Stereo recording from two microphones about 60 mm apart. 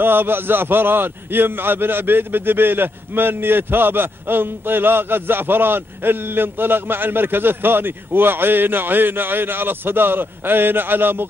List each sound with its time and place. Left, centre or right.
0.0 s a man's voice: right